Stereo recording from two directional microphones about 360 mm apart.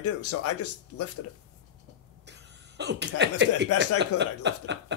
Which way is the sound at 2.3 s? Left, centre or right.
Right.